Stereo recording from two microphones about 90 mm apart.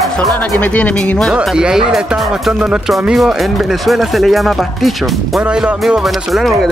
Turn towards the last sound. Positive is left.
turn(degrees=0)  # may be behind; listen again after turning